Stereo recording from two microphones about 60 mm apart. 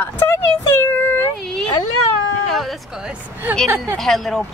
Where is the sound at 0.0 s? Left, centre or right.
Left.